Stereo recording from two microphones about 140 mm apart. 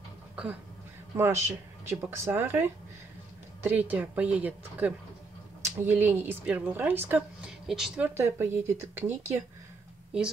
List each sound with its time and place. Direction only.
1.1 s a woman's voice: 15° right (ahead or behind)
8.2 s a woman's voice: 15° right (ahead or behind)